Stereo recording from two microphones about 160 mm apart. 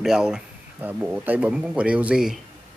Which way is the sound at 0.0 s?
5° right (ahead or behind).